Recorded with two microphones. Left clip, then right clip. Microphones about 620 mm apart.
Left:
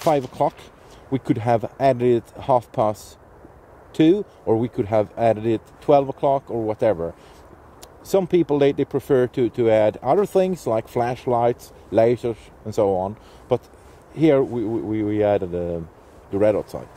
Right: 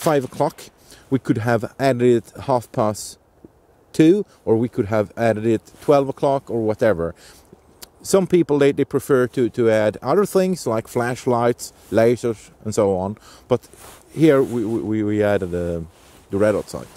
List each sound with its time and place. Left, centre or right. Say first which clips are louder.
0.0 s speech: even; right